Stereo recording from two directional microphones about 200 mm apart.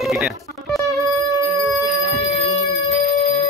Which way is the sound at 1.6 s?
Centre (ahead or behind).